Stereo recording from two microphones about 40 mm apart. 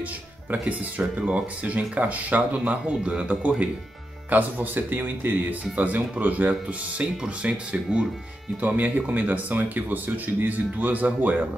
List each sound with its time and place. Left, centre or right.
0.5 s speech: right
1.1 s speech: right
3.0 s speech: right
7.0 s speech: right
8.5 s speech: right